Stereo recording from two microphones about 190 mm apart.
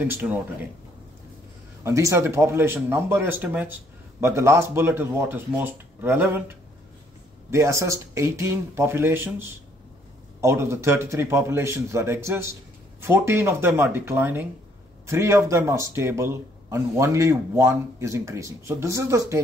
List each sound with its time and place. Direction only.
0.0 s speech: 10° right (ahead or behind)
1.9 s speech: 15° right (ahead or behind)
7.5 s speech: 15° right (ahead or behind)